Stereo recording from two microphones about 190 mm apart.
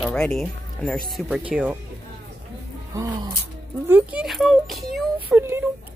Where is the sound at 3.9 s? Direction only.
10° right (ahead or behind).